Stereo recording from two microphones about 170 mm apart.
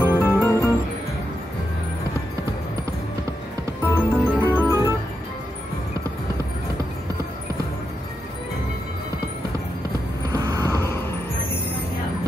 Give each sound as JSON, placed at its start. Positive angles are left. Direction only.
{"t": 0.0, "sound": "music", "side_deg": 15}
{"t": 3.8, "sound": "organ", "side_deg": 15}
{"t": 10.3, "sound": "vehicle", "side_deg": -20}
{"t": 10.7, "sound": "music", "side_deg": 15}